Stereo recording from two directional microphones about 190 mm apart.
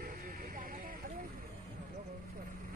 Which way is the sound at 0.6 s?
45° right (ahead or behind).